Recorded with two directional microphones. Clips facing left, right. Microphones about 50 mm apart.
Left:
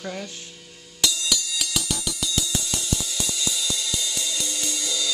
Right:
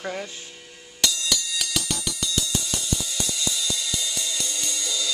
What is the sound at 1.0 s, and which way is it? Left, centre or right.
Music, centre.